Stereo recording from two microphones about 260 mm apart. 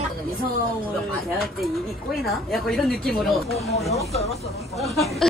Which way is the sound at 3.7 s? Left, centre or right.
Left.